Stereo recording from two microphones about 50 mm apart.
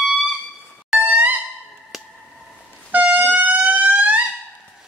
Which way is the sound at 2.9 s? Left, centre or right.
Right.